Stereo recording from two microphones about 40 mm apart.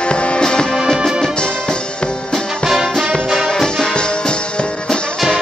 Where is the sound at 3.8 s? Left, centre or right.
Left.